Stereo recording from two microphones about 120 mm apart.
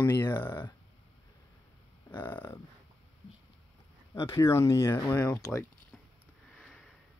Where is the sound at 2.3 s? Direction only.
20° left (ahead or behind).